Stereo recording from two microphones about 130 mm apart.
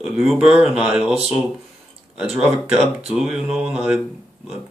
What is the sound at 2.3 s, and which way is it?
Speech, 10° right (ahead or behind).